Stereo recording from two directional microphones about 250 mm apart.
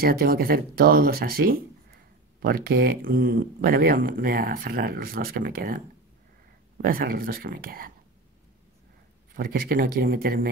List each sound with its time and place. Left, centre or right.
0.0 s speech: right
6.8 s speech: right
9.3 s speech: right